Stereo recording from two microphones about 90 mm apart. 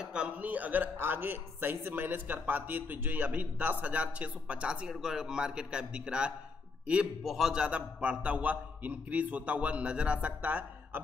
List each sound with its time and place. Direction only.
0.0 s a man's voice: 10° right (ahead or behind)